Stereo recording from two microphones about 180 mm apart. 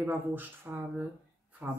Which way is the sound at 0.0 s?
10° right (ahead or behind).